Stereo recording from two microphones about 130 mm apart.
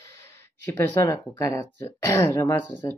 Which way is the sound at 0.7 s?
20° left (ahead or behind).